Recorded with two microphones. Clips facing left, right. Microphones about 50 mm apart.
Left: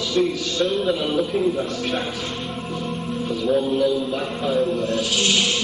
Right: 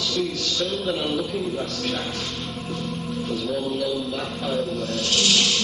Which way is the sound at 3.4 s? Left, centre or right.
Left.